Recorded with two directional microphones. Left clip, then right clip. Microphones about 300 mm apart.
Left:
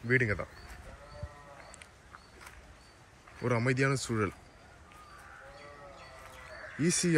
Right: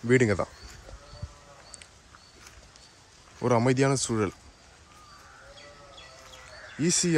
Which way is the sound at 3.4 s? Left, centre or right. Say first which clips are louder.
Right 6 dB; centre.